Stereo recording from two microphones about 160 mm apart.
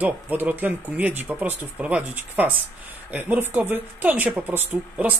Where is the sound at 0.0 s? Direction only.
10° right (ahead or behind).